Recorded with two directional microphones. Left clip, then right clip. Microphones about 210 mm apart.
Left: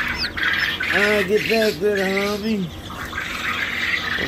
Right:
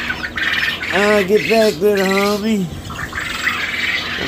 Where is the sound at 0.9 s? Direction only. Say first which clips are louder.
Right 5 dB; 20° right (ahead or behind).